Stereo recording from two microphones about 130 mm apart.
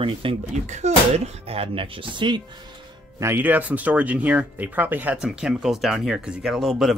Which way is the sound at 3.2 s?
15° right (ahead or behind).